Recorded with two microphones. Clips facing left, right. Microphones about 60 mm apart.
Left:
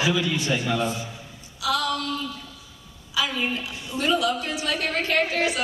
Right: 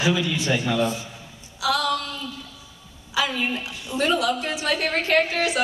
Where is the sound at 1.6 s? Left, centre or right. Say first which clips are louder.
Right 2 dB; right.